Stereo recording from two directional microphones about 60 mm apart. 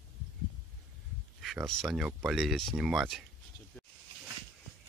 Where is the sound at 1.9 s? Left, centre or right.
Centre.